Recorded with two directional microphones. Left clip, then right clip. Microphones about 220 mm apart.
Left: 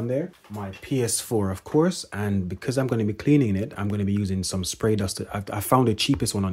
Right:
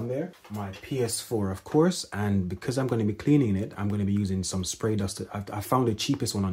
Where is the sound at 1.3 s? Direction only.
40° left (ahead or behind).